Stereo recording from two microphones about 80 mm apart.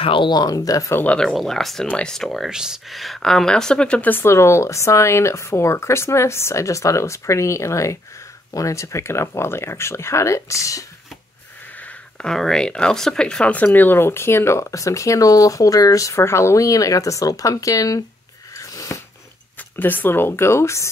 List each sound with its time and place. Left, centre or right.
0.1 s speech: left
1.0 s speech: centre
2.5 s speech: centre
4.1 s speech: left
11.8 s speech: centre
13.6 s speech: left
18.6 s a sound: left
19.8 s speech: left